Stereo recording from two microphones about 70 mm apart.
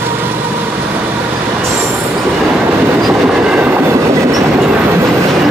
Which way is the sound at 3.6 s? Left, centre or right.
Right.